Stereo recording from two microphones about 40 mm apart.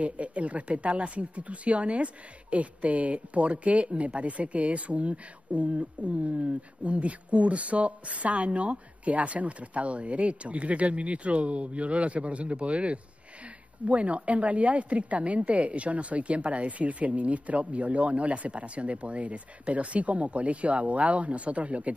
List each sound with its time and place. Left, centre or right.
0.0 s speech: right